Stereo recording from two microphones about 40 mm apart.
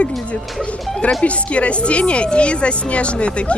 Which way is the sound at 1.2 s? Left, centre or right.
Left.